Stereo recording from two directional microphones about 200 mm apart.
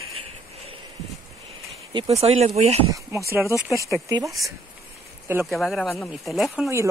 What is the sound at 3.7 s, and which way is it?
Speech, 15° right (ahead or behind).